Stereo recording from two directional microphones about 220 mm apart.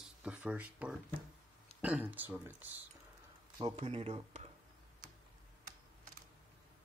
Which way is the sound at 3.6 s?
20° right (ahead or behind).